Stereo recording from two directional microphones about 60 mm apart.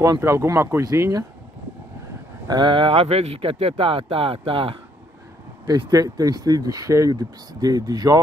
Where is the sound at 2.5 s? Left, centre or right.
Right.